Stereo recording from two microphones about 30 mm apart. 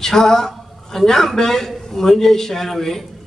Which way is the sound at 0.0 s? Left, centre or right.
Centre.